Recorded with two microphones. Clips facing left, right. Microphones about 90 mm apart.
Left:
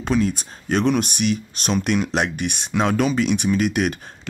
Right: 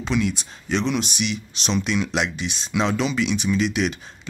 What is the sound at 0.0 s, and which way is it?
Speech, 45° left (ahead or behind).